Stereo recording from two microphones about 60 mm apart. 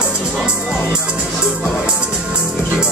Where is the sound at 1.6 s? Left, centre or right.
Centre.